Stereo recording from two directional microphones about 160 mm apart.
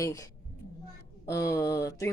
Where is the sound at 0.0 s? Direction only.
20° left (ahead or behind).